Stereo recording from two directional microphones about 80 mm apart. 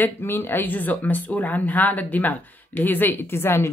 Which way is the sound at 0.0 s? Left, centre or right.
Left.